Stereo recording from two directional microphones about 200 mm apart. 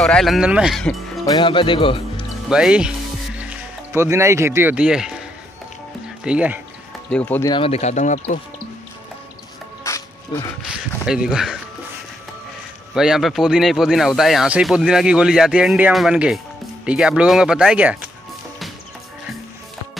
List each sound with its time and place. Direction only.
0.0 s speech: centre (ahead or behind)
1.2 s speech: 20° left (ahead or behind)
2.5 s speech: 5° right (ahead or behind)
6.2 s speech: 5° right (ahead or behind)
7.1 s speech: 5° left (ahead or behind)
7.4 s speech: 25° left (ahead or behind)
9.8 s music: 15° left (ahead or behind)
11.1 s speech: 5° right (ahead or behind)
12.9 s speech: 5° right (ahead or behind)